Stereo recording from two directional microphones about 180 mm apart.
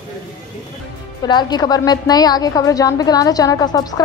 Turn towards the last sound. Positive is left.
turn(degrees=20)  # may be behind; listen again after turning